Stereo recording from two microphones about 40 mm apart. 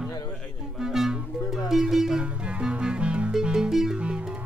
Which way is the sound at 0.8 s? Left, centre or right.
Centre.